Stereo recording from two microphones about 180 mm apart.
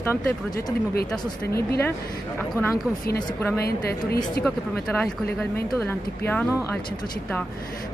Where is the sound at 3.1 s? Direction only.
10° left (ahead or behind).